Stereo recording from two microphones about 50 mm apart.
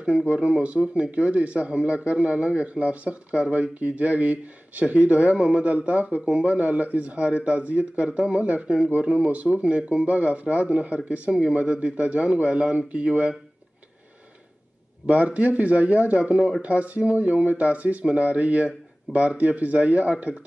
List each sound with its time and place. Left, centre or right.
0.0 s speech: right
8.6 s speech: centre
8.9 s speech: right
15.0 s speech: right